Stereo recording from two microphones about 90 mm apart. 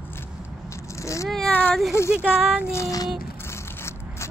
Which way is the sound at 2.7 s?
40° left (ahead or behind).